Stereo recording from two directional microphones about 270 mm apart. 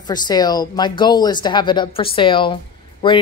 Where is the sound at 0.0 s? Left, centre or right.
Centre.